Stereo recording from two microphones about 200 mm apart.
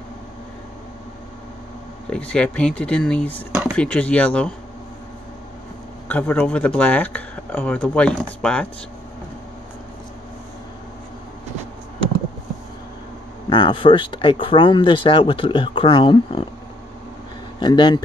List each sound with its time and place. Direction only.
2.0 s speech: 5° left (ahead or behind)
6.0 s speech: 5° left (ahead or behind)
13.5 s speech: 25° left (ahead or behind)
17.6 s speech: 25° left (ahead or behind)